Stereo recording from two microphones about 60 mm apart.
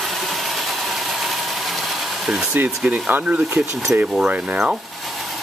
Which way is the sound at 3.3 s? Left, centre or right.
Centre.